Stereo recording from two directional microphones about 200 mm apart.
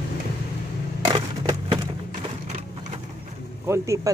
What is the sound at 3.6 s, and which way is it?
Speech, 15° right (ahead or behind).